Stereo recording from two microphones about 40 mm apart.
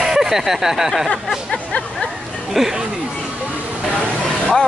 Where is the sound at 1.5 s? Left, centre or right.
Left.